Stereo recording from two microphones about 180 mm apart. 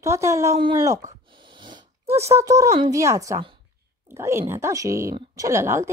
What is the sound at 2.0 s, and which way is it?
Speech, 15° right (ahead or behind).